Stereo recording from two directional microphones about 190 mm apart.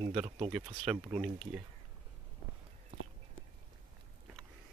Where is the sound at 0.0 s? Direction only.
25° right (ahead or behind).